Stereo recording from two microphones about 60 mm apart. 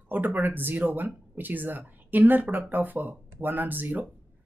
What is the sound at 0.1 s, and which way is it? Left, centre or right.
Speech, right.